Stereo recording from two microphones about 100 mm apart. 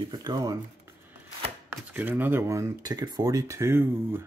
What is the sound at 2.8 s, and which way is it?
Speech, 40° right (ahead or behind).